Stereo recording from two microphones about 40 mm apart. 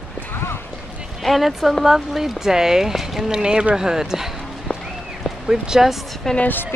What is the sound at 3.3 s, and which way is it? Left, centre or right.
Speech, centre.